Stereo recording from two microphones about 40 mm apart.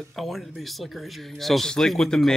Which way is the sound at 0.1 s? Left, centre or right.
Centre.